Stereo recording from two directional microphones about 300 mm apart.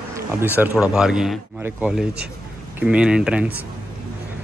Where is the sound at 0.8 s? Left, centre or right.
Centre.